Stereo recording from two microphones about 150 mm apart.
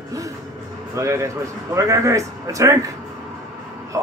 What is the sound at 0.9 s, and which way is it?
A man's voice, 20° right (ahead or behind).